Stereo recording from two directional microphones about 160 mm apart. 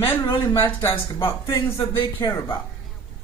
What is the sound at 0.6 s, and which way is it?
Speech, 15° left (ahead or behind).